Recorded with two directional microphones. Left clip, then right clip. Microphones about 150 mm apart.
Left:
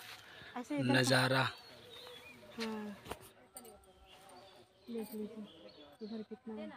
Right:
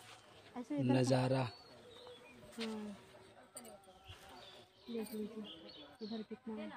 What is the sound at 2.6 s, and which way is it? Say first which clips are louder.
Speech: left 3 dB; 5° left (ahead or behind).